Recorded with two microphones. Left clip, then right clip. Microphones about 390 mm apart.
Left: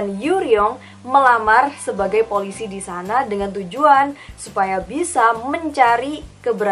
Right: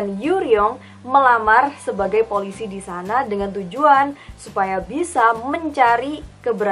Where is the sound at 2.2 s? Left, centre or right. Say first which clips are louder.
Left 1 dB; centre.